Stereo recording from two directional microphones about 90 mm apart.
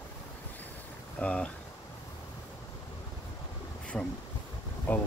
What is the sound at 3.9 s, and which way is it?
Speech, 10° left (ahead or behind).